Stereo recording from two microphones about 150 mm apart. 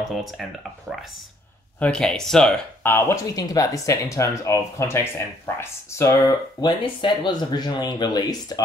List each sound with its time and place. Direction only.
0.1 s speech: centre (ahead or behind)
2.8 s speech: 15° left (ahead or behind)